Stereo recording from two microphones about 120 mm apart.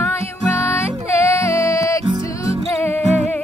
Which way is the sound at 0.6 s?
20° left (ahead or behind).